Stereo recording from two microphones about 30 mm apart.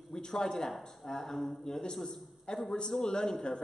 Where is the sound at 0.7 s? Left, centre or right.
Centre.